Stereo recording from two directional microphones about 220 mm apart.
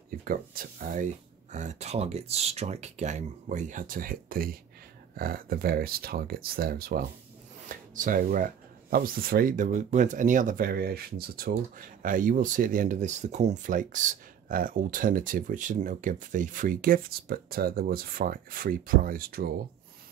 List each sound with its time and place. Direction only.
0.1 s speech: 40° right (ahead or behind)